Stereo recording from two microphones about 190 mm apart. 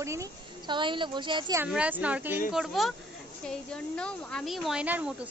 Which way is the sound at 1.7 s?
5° right (ahead or behind).